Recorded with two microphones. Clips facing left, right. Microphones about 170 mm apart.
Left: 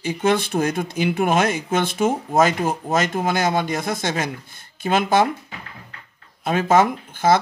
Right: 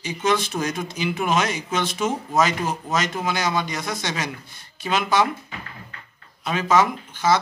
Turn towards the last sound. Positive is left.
turn(degrees=50)  # may be behind; listen again after turning